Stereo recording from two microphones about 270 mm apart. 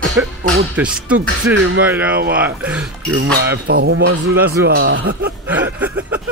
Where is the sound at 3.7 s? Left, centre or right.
Right.